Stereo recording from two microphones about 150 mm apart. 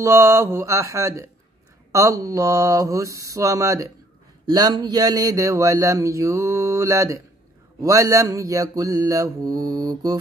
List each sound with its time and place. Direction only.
0.0 s speech: 20° right (ahead or behind)